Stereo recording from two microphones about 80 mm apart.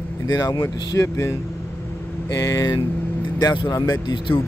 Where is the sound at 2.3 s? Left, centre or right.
Left.